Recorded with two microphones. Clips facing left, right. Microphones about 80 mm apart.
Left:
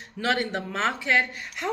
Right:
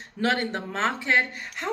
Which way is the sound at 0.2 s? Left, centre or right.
Right.